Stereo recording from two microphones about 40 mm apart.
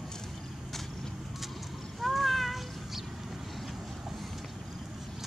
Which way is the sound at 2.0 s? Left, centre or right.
Centre.